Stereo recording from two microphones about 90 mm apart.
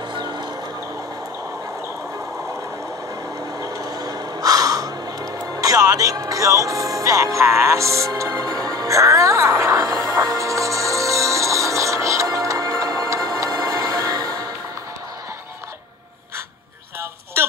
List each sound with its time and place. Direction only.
0.1 s music: 55° right (ahead or behind)
3.5 s crow: 40° right (ahead or behind)
7.3 s music: 30° right (ahead or behind)